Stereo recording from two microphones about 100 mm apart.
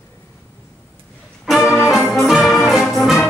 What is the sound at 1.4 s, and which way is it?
Music, 5° right (ahead or behind).